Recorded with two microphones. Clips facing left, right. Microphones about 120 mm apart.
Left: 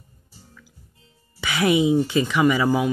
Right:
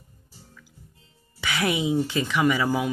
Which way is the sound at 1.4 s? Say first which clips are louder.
Left 6 dB; 10° left (ahead or behind).